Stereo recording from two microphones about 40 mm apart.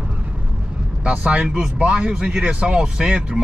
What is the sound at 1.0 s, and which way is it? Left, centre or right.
Speech, right.